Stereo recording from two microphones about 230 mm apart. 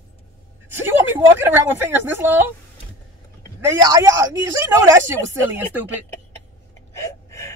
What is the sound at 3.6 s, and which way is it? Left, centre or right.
Speech, centre.